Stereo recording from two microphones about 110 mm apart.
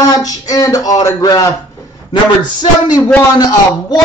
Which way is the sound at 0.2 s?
35° left (ahead or behind).